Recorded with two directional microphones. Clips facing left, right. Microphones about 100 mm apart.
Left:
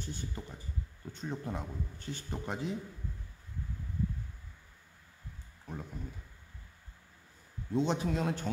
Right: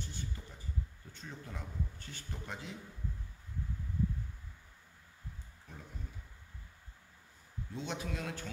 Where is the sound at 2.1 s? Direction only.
30° left (ahead or behind).